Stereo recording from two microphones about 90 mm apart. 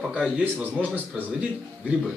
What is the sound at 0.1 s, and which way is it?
A man's voice, 15° right (ahead or behind).